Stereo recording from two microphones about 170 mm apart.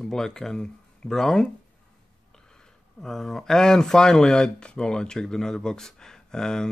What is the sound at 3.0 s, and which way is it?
Speech, centre (ahead or behind).